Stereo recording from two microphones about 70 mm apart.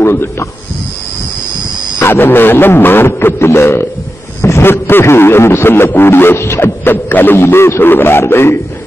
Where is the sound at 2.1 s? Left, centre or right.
Left.